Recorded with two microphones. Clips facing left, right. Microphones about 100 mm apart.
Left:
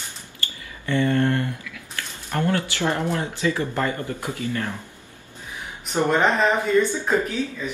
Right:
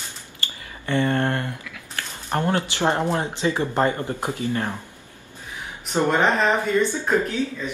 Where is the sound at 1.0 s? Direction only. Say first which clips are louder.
Left 1 dB; 50° right (ahead or behind).